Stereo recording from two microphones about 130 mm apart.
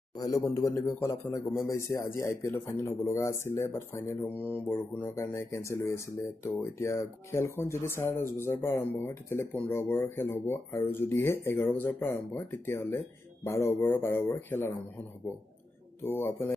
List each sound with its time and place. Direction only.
0.7 s speech: 25° left (ahead or behind)
16.0 s speech: 20° left (ahead or behind)